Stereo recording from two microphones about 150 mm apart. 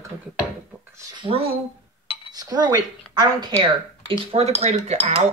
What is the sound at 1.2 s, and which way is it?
Speech, 40° right (ahead or behind).